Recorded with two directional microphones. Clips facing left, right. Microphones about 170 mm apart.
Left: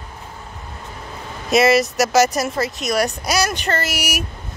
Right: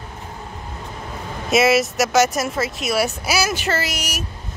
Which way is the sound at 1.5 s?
Centre (ahead or behind).